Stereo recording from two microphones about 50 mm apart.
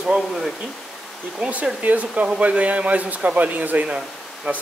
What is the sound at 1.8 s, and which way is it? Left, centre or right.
A man's voice, right.